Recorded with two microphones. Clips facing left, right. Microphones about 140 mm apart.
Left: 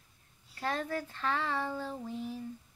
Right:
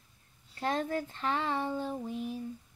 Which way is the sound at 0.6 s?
20° right (ahead or behind).